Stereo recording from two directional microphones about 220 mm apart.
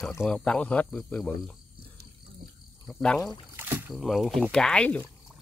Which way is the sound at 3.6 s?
10° right (ahead or behind).